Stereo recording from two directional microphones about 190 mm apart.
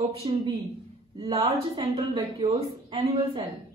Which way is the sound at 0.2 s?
30° right (ahead or behind).